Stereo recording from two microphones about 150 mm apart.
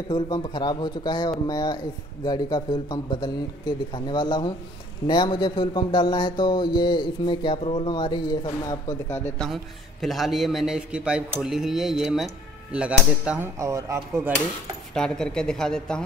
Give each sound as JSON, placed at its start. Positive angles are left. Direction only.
{"t": 0.1, "sound": "speech", "side_deg": 30}
{"t": 10.0, "sound": "speech", "side_deg": 0}
{"t": 13.6, "sound": "speech", "side_deg": -20}
{"t": 15.0, "sound": "speech", "side_deg": 5}